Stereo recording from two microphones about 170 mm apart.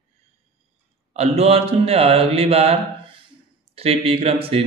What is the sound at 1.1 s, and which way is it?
Speech, 35° right (ahead or behind).